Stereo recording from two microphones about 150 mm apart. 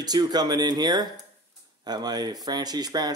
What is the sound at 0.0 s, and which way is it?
Speech, 25° right (ahead or behind).